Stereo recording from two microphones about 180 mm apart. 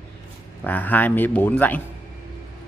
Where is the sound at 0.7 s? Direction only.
10° left (ahead or behind).